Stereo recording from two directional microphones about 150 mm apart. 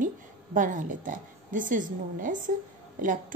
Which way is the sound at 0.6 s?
60° right (ahead or behind).